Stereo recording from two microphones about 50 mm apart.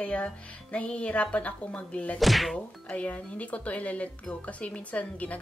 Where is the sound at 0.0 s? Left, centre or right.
Left.